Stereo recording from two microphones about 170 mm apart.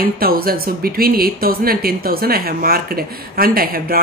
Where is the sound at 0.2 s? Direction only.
60° right (ahead or behind).